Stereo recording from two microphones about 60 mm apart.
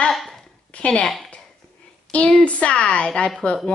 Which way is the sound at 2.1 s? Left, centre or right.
Left.